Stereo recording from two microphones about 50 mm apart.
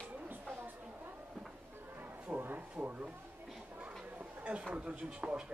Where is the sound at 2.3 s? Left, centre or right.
Right.